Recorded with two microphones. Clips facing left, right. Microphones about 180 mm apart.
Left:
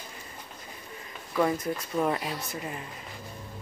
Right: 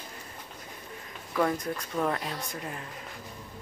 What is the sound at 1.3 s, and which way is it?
Speech, 5° left (ahead or behind).